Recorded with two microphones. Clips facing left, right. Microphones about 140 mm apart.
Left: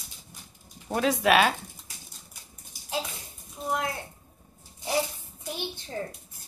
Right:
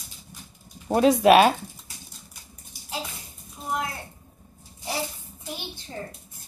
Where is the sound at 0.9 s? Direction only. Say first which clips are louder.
Right 7 dB; 25° right (ahead or behind).